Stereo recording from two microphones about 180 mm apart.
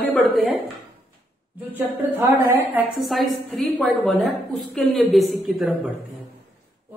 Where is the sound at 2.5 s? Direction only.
10° right (ahead or behind).